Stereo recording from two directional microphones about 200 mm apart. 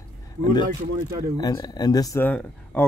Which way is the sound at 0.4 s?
20° left (ahead or behind).